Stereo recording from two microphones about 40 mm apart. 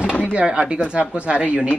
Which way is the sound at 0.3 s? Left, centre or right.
Right.